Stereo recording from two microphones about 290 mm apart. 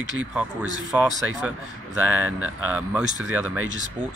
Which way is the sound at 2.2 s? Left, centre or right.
Right.